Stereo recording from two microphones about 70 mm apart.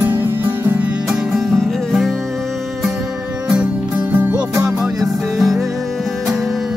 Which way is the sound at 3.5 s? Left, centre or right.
Centre.